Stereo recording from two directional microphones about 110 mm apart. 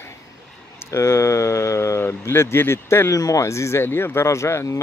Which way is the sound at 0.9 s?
25° left (ahead or behind).